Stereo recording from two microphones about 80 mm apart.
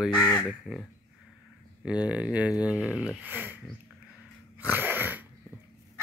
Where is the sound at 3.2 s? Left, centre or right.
Right.